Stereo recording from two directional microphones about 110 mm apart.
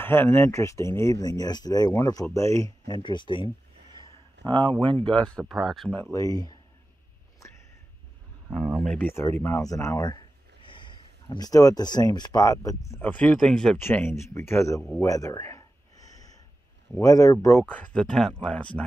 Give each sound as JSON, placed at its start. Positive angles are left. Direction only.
{"t": 0.0, "sound": "speech", "side_deg": 20}
{"t": 3.0, "sound": "speech", "side_deg": 45}
{"t": 4.5, "sound": "speech", "side_deg": -50}
{"t": 5.4, "sound": "speech", "side_deg": 0}
{"t": 6.1, "sound": "speech", "side_deg": 35}
{"t": 8.5, "sound": "speech", "side_deg": 5}
{"t": 9.0, "sound": "speech", "side_deg": 25}
{"t": 10.7, "sound": "speech", "side_deg": 45}
{"t": 13.0, "sound": "speech", "side_deg": 15}
{"t": 13.7, "sound": "speech", "side_deg": 20}
{"t": 15.0, "sound": "a sound", "side_deg": 30}
{"t": 17.0, "sound": "speech", "side_deg": 30}
{"t": 17.7, "sound": "speech", "side_deg": 10}